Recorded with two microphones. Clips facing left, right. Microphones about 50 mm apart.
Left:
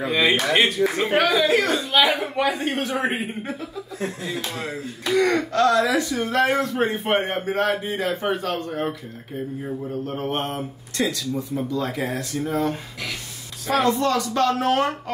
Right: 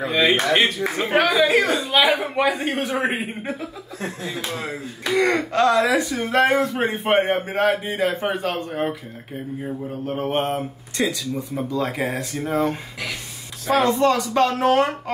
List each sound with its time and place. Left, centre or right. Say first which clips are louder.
0.0 s speech: right 1 dB; centre
6.0 s speech: right 2 dB; centre
9.6 s speech: right 1 dB; centre